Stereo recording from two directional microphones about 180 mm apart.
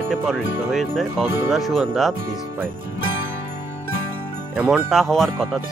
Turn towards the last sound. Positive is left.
turn(degrees=0)  # may be behind; listen again after turning